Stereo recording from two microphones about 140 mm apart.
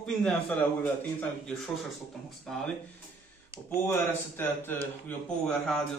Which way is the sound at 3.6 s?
15° left (ahead or behind).